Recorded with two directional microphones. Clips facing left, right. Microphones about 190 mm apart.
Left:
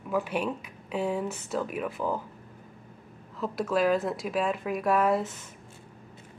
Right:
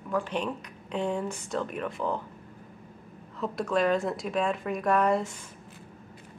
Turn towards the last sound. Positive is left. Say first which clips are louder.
# even
turn(degrees=5)  # may be behind; listen again after turning